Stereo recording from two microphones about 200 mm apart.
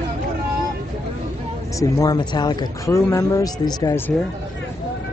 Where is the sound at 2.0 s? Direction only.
20° left (ahead or behind).